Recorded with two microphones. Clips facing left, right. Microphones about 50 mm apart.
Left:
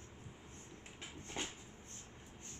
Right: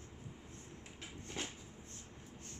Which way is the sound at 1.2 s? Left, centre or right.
Left.